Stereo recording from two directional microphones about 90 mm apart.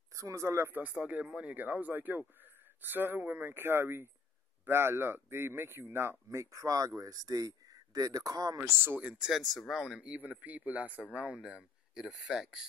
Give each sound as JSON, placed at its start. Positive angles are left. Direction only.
{"t": 0.1, "sound": "speech", "side_deg": -35}
{"t": 8.5, "sound": "speech", "side_deg": -30}
{"t": 9.0, "sound": "speech", "side_deg": -10}
{"t": 9.3, "sound": "speech", "side_deg": 0}